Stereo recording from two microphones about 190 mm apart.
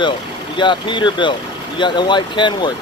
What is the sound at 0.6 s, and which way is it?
Speech, 25° left (ahead or behind).